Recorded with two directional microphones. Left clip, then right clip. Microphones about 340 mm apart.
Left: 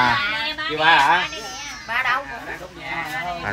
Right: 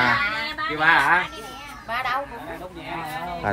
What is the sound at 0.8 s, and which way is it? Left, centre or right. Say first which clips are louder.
Speech: left 2 dB; left.